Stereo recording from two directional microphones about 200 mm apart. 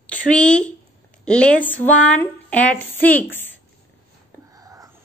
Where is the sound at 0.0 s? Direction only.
5° left (ahead or behind).